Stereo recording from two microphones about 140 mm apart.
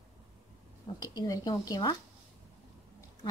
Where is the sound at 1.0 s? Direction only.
25° left (ahead or behind).